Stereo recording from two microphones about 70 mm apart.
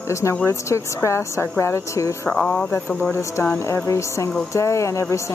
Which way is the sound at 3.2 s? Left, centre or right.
Left.